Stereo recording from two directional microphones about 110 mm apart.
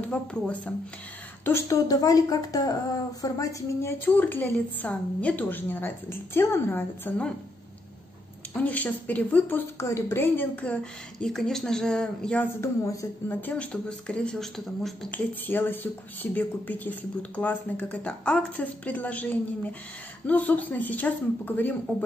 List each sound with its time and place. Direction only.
0.0 s a woman's voice: 10° left (ahead or behind)
1.4 s a woman's voice: 20° left (ahead or behind)
1.9 s a woman's voice: 35° left (ahead or behind); by 7.3 s 15° left (ahead or behind)
8.5 s a woman's voice: 15° left (ahead or behind)
12.5 s a man's voice: 30° left (ahead or behind)
13.3 s a woman's voice: 15° left (ahead or behind)
15.0 s a woman's voice: 15° left (ahead or behind)